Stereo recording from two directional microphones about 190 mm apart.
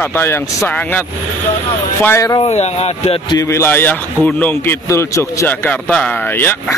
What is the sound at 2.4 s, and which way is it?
Speech, 35° left (ahead or behind).